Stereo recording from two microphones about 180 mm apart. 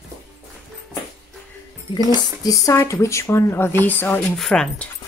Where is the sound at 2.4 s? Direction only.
20° left (ahead or behind).